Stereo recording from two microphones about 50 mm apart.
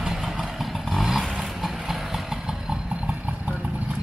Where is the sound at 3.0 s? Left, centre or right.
Right.